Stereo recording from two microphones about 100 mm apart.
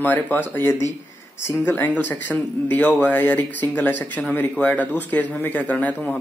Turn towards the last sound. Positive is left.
turn(degrees=15)  # may be behind; listen again after turning